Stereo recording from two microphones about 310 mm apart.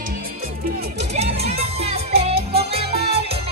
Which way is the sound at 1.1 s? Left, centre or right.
Centre.